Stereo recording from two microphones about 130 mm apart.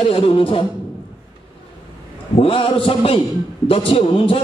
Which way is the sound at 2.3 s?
45° left (ahead or behind).